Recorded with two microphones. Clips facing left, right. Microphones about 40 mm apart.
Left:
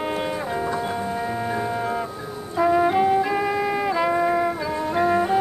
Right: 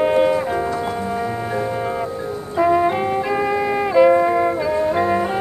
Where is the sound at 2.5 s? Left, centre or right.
Centre.